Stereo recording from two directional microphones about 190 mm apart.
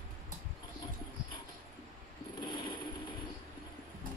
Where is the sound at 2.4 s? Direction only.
25° left (ahead or behind).